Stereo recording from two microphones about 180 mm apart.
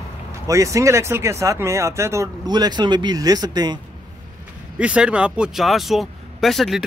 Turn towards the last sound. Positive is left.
turn(degrees=0)  # may be behind; listen again after turning